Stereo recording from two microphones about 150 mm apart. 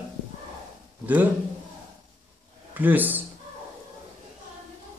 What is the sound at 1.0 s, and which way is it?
Speech, 10° right (ahead or behind).